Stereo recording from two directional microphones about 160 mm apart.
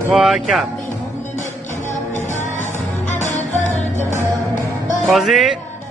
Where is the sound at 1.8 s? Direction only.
50° left (ahead or behind).